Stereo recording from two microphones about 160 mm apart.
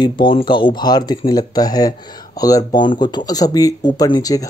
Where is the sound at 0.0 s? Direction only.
30° left (ahead or behind).